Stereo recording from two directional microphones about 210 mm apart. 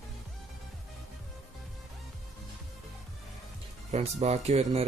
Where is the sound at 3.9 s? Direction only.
30° right (ahead or behind).